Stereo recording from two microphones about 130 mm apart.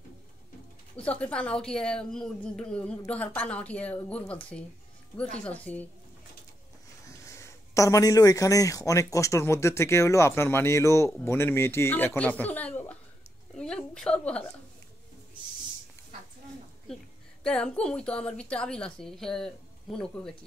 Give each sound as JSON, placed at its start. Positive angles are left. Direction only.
{"t": 0.9, "sound": "a woman's voice", "side_deg": 10}
{"t": 7.1, "sound": "a man's voice", "side_deg": 20}
{"t": 13.6, "sound": "a sound", "side_deg": 5}
{"t": 17.4, "sound": "a woman's voice", "side_deg": 5}